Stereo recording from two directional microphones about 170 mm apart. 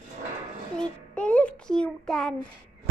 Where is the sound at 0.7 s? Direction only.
5° left (ahead or behind).